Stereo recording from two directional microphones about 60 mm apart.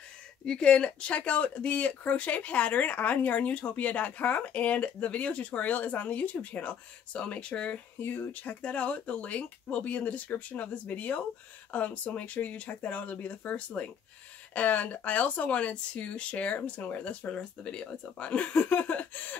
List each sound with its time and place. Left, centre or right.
0.5 s speech: centre
8.0 s speech: left